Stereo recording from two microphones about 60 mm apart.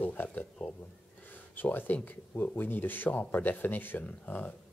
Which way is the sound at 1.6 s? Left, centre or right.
Left.